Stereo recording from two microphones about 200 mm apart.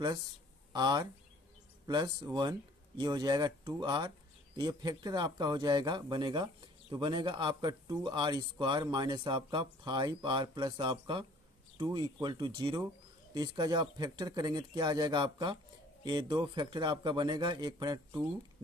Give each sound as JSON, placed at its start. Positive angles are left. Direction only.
{"t": 0.7, "sound": "speech", "side_deg": -20}